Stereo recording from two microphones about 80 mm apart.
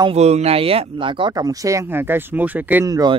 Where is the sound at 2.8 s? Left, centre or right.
Right.